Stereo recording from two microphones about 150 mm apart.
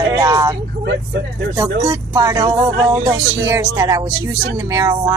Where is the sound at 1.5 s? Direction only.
25° right (ahead or behind).